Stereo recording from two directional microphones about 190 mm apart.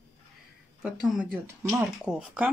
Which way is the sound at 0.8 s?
5° right (ahead or behind).